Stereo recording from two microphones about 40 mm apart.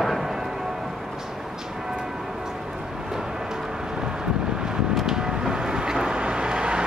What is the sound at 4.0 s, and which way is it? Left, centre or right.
Wind noise, centre.